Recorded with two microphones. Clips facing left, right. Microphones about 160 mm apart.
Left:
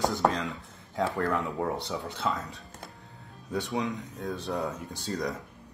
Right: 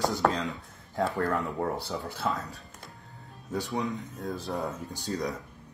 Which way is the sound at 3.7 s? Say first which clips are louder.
Even; centre (ahead or behind).